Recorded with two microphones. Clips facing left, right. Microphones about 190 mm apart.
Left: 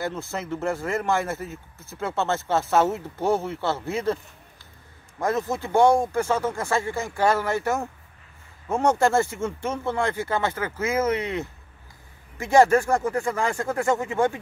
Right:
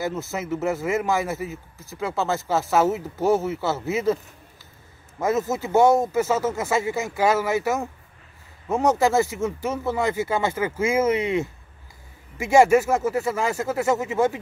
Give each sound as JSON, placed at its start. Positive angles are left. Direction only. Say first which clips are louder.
{"t": 0.3, "sound": "a man's voice", "louder": "right 2 dB", "side_deg": -5}
{"t": 5.2, "sound": "a man's voice", "louder": "right 2 dB", "side_deg": -5}